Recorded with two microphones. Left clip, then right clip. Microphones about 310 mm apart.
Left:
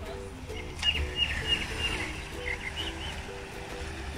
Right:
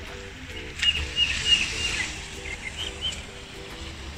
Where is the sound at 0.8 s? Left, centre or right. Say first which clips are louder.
Right 5 dB; centre.